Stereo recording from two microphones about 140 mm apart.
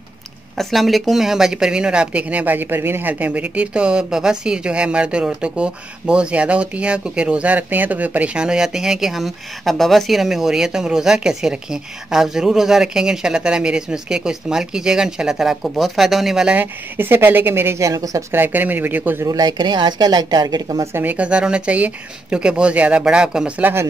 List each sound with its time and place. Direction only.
0.6 s speech: centre (ahead or behind)
19.2 s a woman's voice: 25° right (ahead or behind)
20.9 s speech: 15° right (ahead or behind)